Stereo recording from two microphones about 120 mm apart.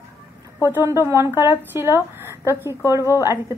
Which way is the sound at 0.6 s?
20° right (ahead or behind).